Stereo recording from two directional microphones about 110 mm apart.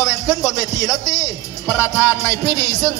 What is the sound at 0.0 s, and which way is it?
A man's voice, 30° left (ahead or behind).